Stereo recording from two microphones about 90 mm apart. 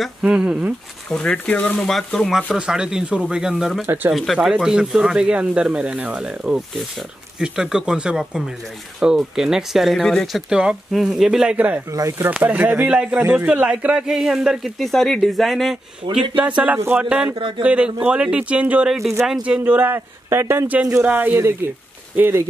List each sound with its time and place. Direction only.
0.2 s speech: 10° right (ahead or behind)
1.1 s speech: 15° left (ahead or behind)
2.5 s speech: 10° right (ahead or behind)
3.8 s speech: 25° right (ahead or behind)
4.1 s speech: centre (ahead or behind); by 11.8 s 15° right (ahead or behind)
11.9 s speech: 35° right (ahead or behind)
12.4 s speech: 20° right (ahead or behind)
13.2 s speech: 25° right (ahead or behind)
13.5 s speech: 10° right (ahead or behind)
16.3 s speech: 15° right (ahead or behind)
19.6 s speech: 20° right (ahead or behind)